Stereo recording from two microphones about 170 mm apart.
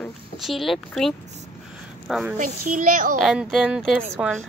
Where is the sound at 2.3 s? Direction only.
55° right (ahead or behind).